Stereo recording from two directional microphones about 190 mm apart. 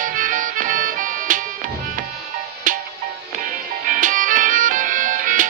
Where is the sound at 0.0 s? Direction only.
45° right (ahead or behind).